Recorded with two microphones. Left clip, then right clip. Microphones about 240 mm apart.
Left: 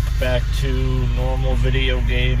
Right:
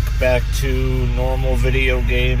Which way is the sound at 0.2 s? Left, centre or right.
Right.